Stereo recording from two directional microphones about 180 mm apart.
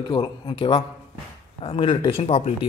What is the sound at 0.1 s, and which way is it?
A man's voice, 30° left (ahead or behind).